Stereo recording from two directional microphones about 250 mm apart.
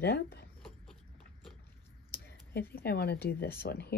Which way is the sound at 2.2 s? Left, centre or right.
Left.